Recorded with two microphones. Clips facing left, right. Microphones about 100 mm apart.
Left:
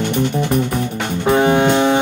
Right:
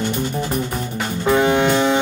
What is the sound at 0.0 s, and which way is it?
Music, 60° left (ahead or behind).